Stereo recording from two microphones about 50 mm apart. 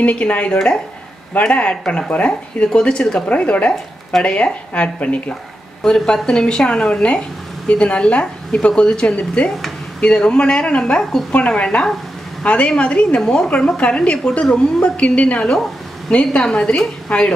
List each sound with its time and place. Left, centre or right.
0.0 s a woman's voice: left
5.9 s a woman's voice: centre
11.3 s speech: left
13.2 s a woman's voice: centre
13.6 s a woman's voice: centre